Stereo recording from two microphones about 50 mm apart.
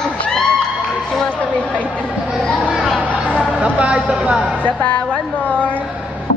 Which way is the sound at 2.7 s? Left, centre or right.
Centre.